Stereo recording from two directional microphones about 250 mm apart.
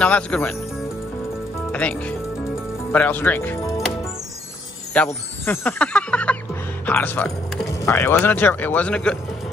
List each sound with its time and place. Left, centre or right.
0.0 s speech: centre
1.7 s speech: centre
4.9 s speech: centre